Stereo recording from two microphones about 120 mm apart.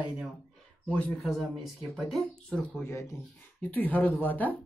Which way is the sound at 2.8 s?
25° left (ahead or behind).